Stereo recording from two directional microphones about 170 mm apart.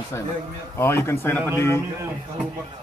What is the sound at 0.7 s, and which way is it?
Speech, 15° left (ahead or behind).